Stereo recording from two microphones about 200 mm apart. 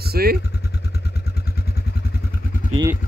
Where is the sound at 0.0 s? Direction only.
50° right (ahead or behind).